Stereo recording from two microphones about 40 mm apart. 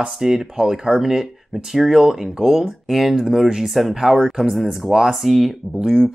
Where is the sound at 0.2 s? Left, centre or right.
Centre.